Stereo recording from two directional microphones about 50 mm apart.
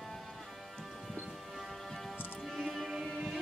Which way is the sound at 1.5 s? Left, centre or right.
Centre.